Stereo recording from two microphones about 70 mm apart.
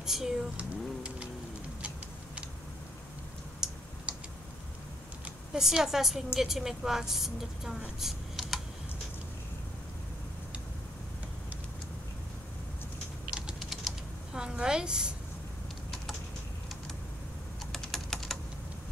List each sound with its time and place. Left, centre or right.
0.0 s speech: centre
0.6 s a sound: centre
3.6 s typing: centre
4.1 s tick: centre
5.2 s speech: centre
13.3 s typing: centre
17.7 s typing: centre